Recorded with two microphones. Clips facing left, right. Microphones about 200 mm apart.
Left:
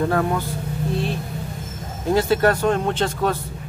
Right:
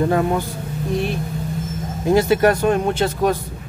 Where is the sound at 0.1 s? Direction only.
20° right (ahead or behind).